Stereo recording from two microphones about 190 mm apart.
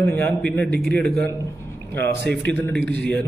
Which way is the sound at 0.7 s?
60° right (ahead or behind).